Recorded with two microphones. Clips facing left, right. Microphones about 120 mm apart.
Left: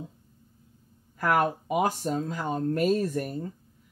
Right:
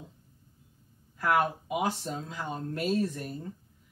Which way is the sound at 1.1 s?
50° left (ahead or behind).